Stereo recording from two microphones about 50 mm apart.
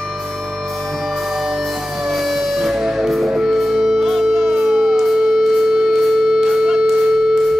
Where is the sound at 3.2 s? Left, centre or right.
Centre.